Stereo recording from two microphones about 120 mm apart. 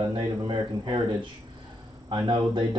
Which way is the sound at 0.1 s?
40° right (ahead or behind).